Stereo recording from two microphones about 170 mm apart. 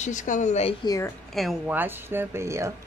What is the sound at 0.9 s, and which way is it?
Speech, 20° left (ahead or behind).